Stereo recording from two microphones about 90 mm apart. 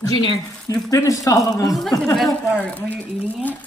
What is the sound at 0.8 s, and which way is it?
Speech, 40° left (ahead or behind).